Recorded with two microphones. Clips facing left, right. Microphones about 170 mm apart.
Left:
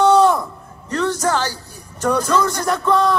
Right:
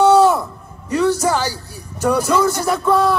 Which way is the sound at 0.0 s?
5° right (ahead or behind).